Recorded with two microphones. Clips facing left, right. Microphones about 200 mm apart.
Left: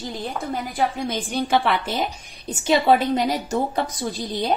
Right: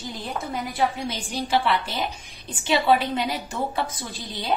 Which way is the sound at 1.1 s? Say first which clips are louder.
Left 3 dB; 55° left (ahead or behind).